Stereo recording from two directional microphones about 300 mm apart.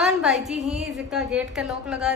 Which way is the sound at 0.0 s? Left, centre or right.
Centre.